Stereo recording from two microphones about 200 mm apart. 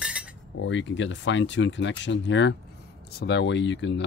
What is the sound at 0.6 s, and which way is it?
Speech, 65° left (ahead or behind).